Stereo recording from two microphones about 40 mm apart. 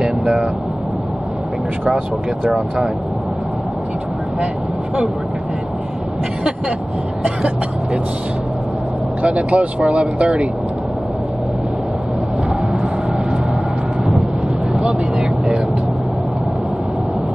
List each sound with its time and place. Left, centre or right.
0.0 s air conditioning: centre
7.2 s speech: right
9.2 s speech: right
14.7 s vehicle: centre